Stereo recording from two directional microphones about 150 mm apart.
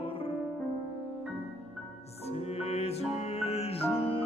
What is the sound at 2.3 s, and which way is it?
Music, 45° left (ahead or behind).